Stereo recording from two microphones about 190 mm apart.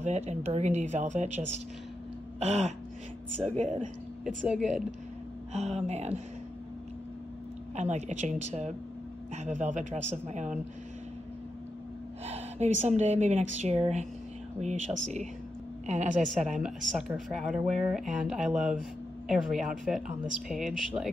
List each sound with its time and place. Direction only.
0.0 s a woman's voice: 35° right (ahead or behind)
2.4 s a woman's voice: 35° right (ahead or behind)
4.2 s speech: centre (ahead or behind)
5.5 s a woman's voice: 35° right (ahead or behind)
7.7 s a woman's voice: 35° right (ahead or behind)
12.3 s a woman's voice: 35° right (ahead or behind)
15.9 s a woman's voice: 40° right (ahead or behind)
16.6 s speech: 5° right (ahead or behind)